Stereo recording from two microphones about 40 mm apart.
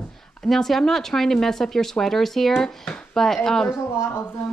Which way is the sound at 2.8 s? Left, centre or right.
Left.